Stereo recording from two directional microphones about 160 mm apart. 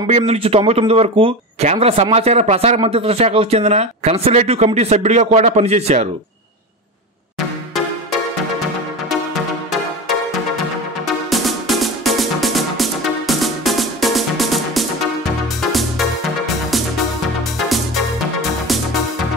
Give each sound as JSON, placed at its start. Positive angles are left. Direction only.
{"t": 0.1, "sound": "speech", "side_deg": -40}
{"t": 11.1, "sound": "music", "side_deg": 0}